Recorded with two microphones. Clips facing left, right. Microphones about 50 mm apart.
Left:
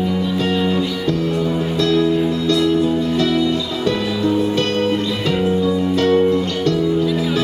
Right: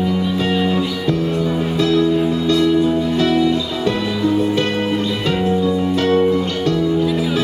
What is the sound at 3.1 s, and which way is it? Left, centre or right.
Music, centre.